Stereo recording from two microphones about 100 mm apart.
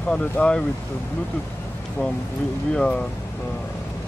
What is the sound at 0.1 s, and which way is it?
Speech, 15° left (ahead or behind).